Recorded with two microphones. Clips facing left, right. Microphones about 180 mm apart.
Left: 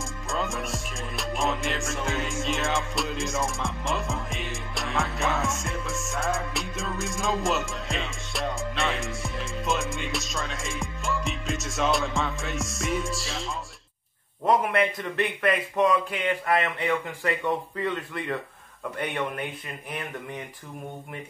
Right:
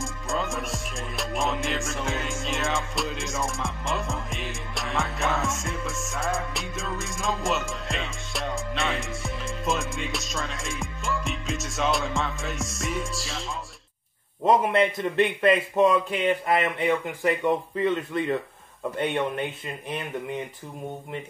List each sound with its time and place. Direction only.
0.0 s music: centre (ahead or behind)
14.4 s a man's voice: 20° right (ahead or behind)